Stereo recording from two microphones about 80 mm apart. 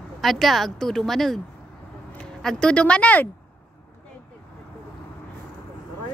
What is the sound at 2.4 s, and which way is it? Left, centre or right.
Speech, centre.